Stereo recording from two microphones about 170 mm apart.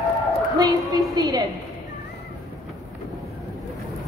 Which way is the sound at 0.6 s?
25° right (ahead or behind).